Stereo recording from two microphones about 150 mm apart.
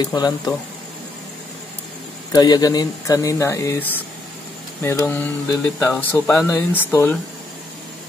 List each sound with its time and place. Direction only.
0.0 s speech: 25° left (ahead or behind)
2.3 s speech: 25° left (ahead or behind)
5.0 s speech: 10° left (ahead or behind)